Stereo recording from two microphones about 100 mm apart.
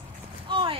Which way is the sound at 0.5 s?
65° right (ahead or behind).